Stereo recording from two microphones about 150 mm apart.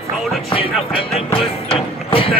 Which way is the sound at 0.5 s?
35° left (ahead or behind).